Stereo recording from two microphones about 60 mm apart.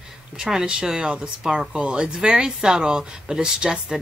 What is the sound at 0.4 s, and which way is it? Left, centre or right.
Speech, centre.